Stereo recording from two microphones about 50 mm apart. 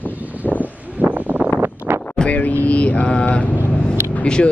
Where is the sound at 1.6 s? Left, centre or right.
Right.